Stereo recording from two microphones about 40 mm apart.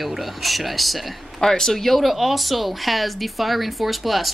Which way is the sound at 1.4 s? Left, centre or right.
Centre.